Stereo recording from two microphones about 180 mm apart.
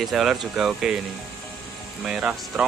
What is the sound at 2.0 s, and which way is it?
Speech, 5° right (ahead or behind).